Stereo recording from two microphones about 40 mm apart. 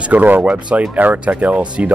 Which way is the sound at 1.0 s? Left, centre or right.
Right.